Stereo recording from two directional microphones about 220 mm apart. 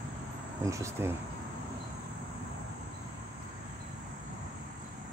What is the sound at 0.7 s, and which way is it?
Cricket, 15° right (ahead or behind).